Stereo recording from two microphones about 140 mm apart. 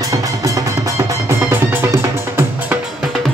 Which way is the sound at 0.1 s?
25° right (ahead or behind).